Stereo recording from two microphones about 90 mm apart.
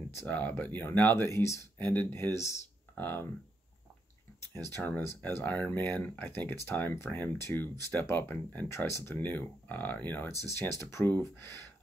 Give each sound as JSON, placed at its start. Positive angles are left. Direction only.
{"t": 0.3, "sound": "speech", "side_deg": 20}
{"t": 4.4, "sound": "speech", "side_deg": 30}
{"t": 10.2, "sound": "speech", "side_deg": 30}